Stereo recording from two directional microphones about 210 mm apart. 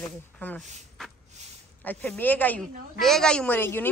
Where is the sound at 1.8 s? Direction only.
10° left (ahead or behind).